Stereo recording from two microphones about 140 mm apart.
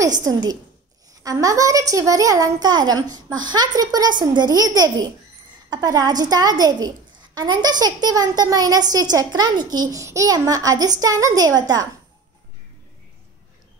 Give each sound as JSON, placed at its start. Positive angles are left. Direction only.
{"t": 0.0, "sound": "a woman's voice", "side_deg": -25}